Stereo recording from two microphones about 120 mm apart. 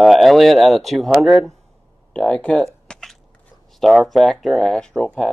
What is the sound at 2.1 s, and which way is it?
Speech, 10° left (ahead or behind).